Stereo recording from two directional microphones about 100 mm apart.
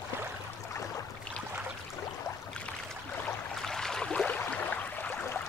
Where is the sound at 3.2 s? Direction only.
5° left (ahead or behind).